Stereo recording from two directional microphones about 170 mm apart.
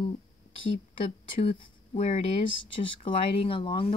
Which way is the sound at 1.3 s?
30° left (ahead or behind).